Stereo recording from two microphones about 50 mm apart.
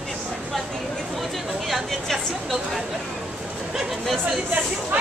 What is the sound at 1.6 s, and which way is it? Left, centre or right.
Speech, centre.